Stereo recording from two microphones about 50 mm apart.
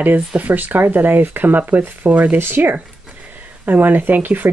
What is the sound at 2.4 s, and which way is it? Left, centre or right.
Speech, right.